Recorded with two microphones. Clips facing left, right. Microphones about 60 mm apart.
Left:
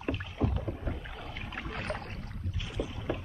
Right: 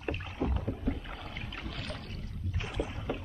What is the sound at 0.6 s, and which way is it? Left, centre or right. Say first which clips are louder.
Rowboat: right 3 dB; centre.